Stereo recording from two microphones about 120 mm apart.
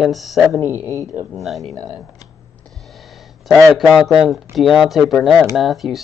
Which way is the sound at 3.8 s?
5° right (ahead or behind).